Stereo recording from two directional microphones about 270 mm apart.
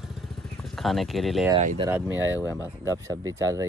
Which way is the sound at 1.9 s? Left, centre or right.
Centre.